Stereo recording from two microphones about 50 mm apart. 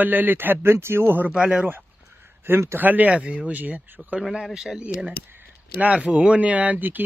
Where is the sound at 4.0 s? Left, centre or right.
Centre.